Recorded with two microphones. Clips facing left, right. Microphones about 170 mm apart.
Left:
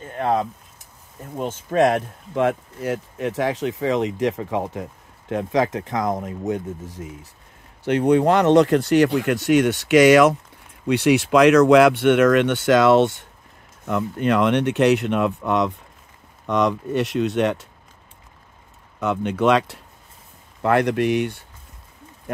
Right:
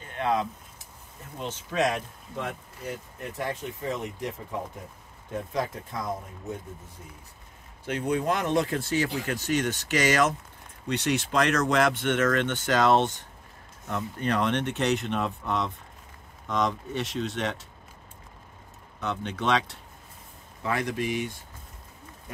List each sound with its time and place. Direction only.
0.1 s speech: 45° left (ahead or behind); by 7.1 s 90° left
7.8 s speech: 75° left (ahead or behind)
19.3 s speech: 60° left (ahead or behind)